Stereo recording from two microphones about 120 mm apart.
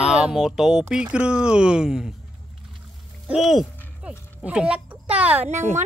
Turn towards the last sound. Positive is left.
turn(degrees=-20)  # may be behind; listen again after turning